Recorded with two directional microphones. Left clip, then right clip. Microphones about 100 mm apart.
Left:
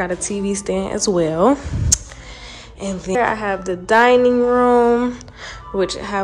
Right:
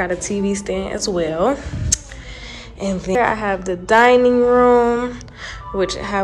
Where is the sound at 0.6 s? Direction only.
65° left (ahead or behind).